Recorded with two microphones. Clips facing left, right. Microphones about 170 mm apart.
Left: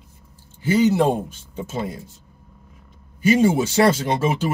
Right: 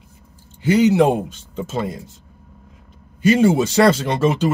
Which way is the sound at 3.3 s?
70° right (ahead or behind).